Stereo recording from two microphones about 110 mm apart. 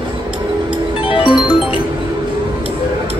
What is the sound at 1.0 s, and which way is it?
Music, 50° left (ahead or behind).